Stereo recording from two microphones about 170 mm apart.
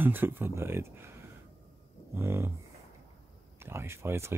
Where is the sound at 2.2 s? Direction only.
15° right (ahead or behind).